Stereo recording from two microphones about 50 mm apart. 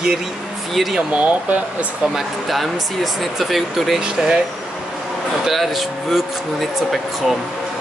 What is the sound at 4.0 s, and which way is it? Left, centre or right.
Speech, centre.